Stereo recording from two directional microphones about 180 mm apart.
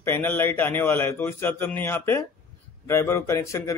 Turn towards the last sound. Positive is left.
turn(degrees=15)  # may be behind; listen again after turning